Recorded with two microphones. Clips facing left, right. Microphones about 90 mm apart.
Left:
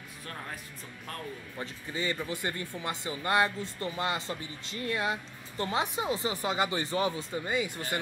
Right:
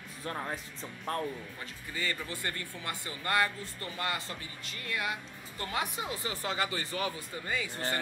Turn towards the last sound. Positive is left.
turn(degrees=20)  # may be behind; listen again after turning